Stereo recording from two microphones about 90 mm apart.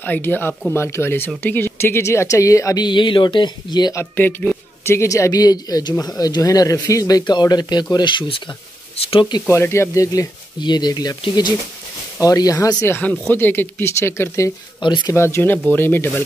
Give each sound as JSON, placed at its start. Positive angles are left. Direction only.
{"t": 0.0, "sound": "speech", "side_deg": 20}
{"t": 2.8, "sound": "speech", "side_deg": 60}
{"t": 3.9, "sound": "speech", "side_deg": 25}
{"t": 9.0, "sound": "speech", "side_deg": 90}
{"t": 9.5, "sound": "speech", "side_deg": 30}
{"t": 10.6, "sound": "speech", "side_deg": 50}
{"t": 12.8, "sound": "speech", "side_deg": 25}
{"t": 14.8, "sound": "speech", "side_deg": 60}
{"t": 15.1, "sound": "speech", "side_deg": 30}